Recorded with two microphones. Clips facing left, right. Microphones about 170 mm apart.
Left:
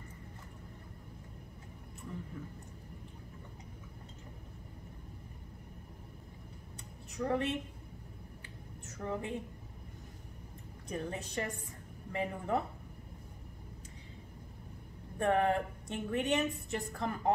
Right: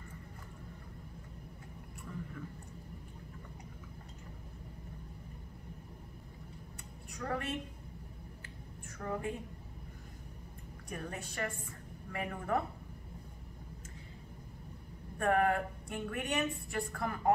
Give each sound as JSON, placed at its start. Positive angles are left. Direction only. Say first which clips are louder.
{"t": 7.1, "sound": "a woman's voice", "louder": "left 5 dB", "side_deg": 20}
{"t": 8.8, "sound": "a woman's voice", "louder": "even", "side_deg": 20}
{"t": 10.9, "sound": "a woman's voice", "louder": "left 4 dB", "side_deg": 20}
{"t": 15.1, "sound": "a woman's voice", "louder": "even", "side_deg": 25}